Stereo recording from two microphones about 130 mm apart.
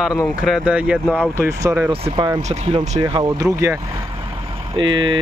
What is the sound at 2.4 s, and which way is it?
Speech, 55° right (ahead or behind).